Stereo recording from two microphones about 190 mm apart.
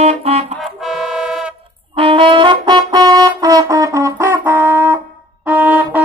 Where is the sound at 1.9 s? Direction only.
25° right (ahead or behind).